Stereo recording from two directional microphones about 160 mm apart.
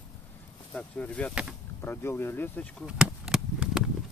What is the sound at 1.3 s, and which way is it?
Speech, 5° right (ahead or behind).